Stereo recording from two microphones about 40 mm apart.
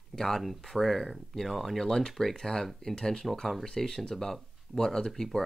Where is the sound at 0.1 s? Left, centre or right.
Centre.